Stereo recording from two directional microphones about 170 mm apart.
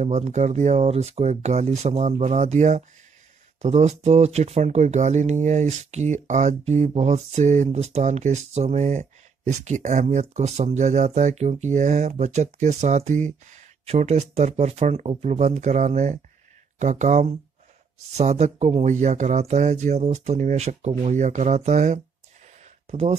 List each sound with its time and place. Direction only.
0.0 s speech: 40° right (ahead or behind)